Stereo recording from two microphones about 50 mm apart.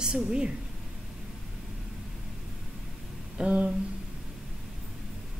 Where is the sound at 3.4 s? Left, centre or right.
Right.